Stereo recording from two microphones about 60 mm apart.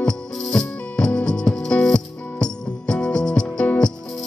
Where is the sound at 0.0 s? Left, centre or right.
Centre.